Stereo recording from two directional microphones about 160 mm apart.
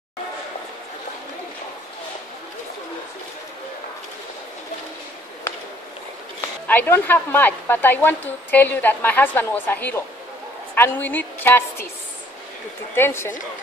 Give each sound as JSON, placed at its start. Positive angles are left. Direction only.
{"t": 6.7, "sound": "a woman's voice", "side_deg": 10}
{"t": 12.9, "sound": "a woman's voice", "side_deg": 15}